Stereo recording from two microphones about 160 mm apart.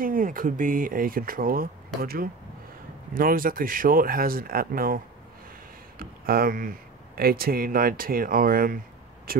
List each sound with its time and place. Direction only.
0.0 s speech: 60° right (ahead or behind)